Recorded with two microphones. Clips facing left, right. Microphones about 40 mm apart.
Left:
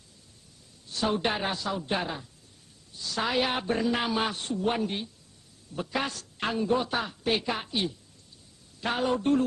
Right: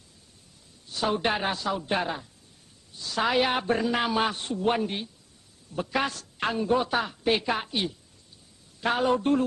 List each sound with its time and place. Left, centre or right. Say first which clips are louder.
0.9 s a man's voice: right 2 dB; centre
9.0 s a man's voice: right 1 dB; centre